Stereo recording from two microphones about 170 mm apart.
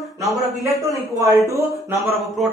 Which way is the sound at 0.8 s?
20° right (ahead or behind).